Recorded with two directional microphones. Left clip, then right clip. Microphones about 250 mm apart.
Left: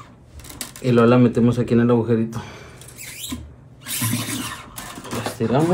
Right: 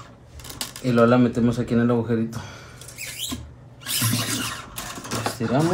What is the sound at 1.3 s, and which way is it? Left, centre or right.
Speech, left.